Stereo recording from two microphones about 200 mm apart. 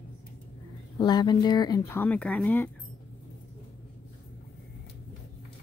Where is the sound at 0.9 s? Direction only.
20° left (ahead or behind).